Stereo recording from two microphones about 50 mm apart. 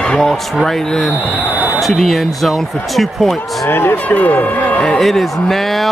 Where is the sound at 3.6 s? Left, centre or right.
Left.